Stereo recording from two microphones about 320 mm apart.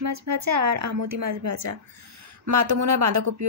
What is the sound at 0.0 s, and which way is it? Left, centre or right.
Speech, right.